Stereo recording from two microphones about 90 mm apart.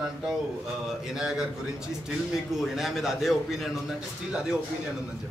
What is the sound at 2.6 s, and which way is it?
A man's voice, 5° right (ahead or behind).